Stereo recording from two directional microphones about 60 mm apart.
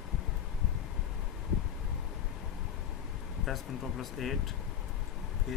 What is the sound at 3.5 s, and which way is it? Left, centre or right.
Speech, centre.